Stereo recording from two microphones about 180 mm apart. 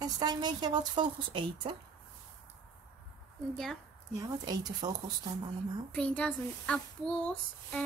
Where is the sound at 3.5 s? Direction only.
Centre (ahead or behind).